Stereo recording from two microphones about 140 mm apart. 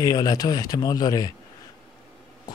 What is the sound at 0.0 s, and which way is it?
Speech, 25° left (ahead or behind).